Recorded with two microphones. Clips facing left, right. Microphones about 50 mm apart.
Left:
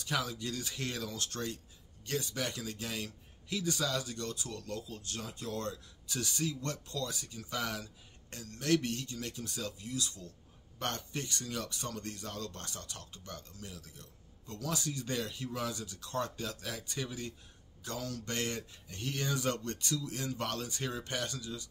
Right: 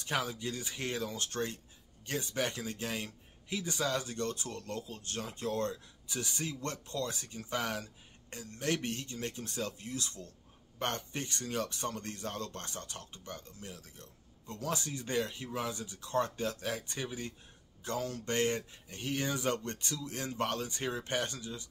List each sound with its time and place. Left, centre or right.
0.0 s speech: right
6.0 s speech: right
10.8 s speech: right